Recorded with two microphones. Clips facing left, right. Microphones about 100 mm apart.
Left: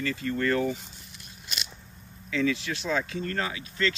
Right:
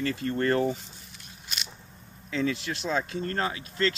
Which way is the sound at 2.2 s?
35° right (ahead or behind).